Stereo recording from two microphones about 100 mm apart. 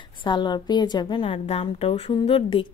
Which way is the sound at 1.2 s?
70° left (ahead or behind).